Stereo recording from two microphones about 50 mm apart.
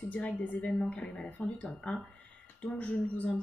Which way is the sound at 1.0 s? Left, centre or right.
Centre.